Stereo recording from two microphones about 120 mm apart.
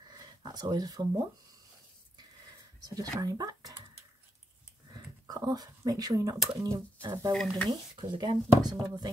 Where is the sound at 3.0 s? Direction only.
30° right (ahead or behind).